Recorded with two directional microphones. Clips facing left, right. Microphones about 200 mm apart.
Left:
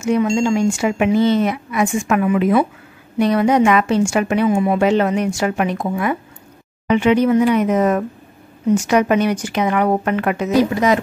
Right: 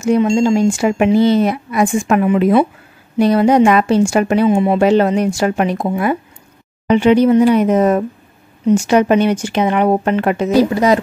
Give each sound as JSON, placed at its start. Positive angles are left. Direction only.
{"t": 0.0, "sound": "a woman's voice", "side_deg": -30}